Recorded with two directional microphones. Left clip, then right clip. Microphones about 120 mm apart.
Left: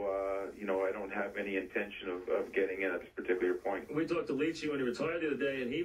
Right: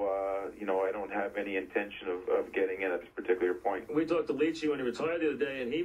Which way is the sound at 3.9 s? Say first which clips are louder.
Right 5 dB; 20° left (ahead or behind).